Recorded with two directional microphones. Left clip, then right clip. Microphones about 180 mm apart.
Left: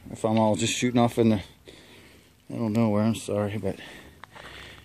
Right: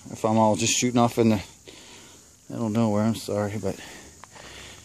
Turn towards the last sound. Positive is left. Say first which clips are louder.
# even
turn(degrees=0)  # may be behind; listen again after turning